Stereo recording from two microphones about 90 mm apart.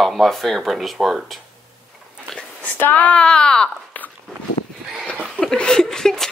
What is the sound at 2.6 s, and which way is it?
Speech, 20° left (ahead or behind).